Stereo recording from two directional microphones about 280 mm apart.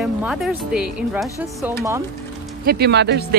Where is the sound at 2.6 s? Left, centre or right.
Right.